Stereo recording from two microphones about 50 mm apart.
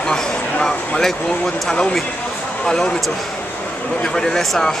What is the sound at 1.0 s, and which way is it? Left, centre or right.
Speech, centre.